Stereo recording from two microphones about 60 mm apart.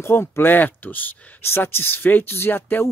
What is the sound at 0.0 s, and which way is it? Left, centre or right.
Speech, left.